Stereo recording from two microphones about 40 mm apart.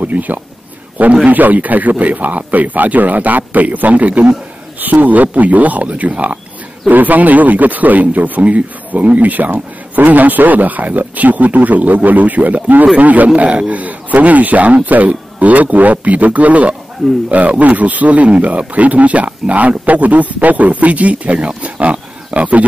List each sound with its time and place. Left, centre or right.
0.0 s a man's voice: right
13.3 s speech: right
21.6 s wild animals: right